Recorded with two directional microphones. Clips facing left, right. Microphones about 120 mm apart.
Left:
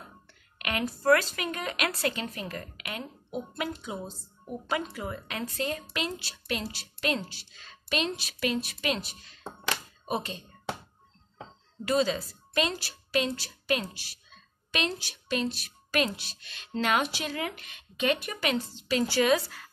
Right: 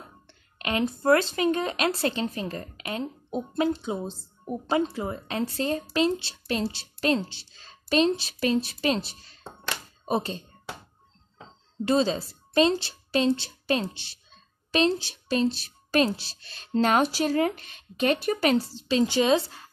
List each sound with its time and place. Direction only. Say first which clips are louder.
0.3 s a woman's voice: right 4 dB; 25° right (ahead or behind)
11.8 s a woman's voice: right 3 dB; 30° right (ahead or behind)